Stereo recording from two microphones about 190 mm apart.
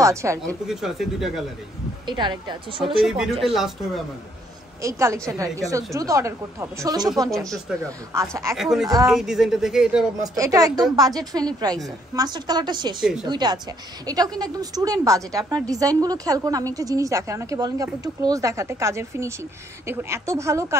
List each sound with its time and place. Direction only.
0.0 s a woman's voice: 15° right (ahead or behind)
0.5 s a woman's voice: centre (ahead or behind)
2.0 s a woman's voice: 25° right (ahead or behind)
3.0 s a woman's voice: centre (ahead or behind)
4.8 s speech: 15° right (ahead or behind)
8.1 s speech: 15° right (ahead or behind)
8.5 s a woman's voice: 5° right (ahead or behind)
10.3 s a woman's voice: 20° right (ahead or behind)